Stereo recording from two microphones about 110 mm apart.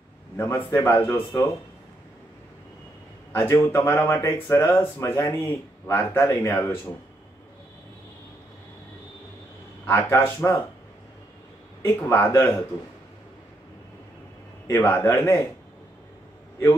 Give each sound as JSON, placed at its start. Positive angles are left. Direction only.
{"t": 0.4, "sound": "speech", "side_deg": 25}
{"t": 3.3, "sound": "speech", "side_deg": 30}
{"t": 9.8, "sound": "speech", "side_deg": 20}
{"t": 11.8, "sound": "speech", "side_deg": 25}
{"t": 14.7, "sound": "speech", "side_deg": 25}